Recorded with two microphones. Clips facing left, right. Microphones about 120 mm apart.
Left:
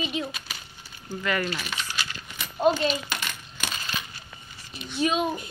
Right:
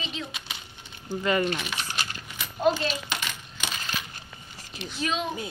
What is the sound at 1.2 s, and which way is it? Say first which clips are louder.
Speech: right 3 dB; 25° right (ahead or behind).